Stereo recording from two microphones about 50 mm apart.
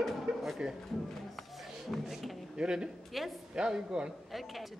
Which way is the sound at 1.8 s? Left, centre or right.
Centre.